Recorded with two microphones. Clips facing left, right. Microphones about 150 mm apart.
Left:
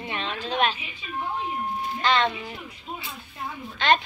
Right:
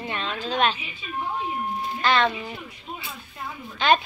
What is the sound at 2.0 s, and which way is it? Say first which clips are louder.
Speech: right 1 dB; 20° left (ahead or behind).